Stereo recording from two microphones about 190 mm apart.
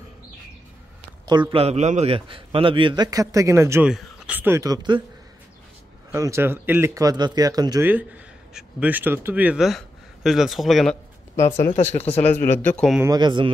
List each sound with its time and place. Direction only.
1.5 s a man's voice: 30° right (ahead or behind)
6.1 s speech: 15° right (ahead or behind)
7.9 s speech: 5° right (ahead or behind)
11.7 s speech: 35° left (ahead or behind)
12.2 s speech: 10° left (ahead or behind)
13.0 s a man's voice: 20° right (ahead or behind)